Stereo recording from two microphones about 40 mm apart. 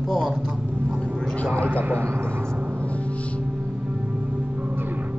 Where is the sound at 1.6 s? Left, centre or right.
Right.